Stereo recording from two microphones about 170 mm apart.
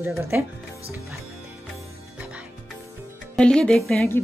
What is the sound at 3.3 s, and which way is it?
Speech, 5° left (ahead or behind).